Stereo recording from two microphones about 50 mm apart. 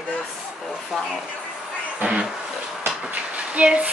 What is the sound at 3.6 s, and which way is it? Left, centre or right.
Speech, right.